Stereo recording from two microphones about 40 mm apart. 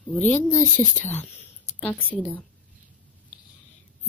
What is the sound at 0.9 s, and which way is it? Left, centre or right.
Speech, left.